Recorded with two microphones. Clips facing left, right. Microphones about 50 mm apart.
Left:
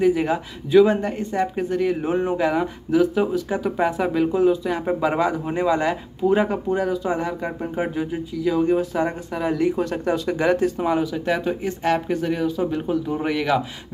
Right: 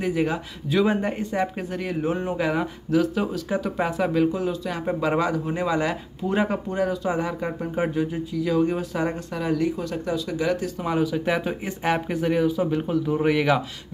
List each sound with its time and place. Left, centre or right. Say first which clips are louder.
0.0 s speech: left 5 dB; centre
0.8 s speech: left 2 dB; centre
9.8 s speech: left 4 dB; left
10.9 s speech: left 1 dB; centre